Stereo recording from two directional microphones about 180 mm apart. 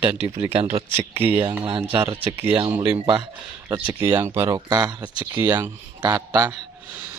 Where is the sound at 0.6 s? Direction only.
35° right (ahead or behind).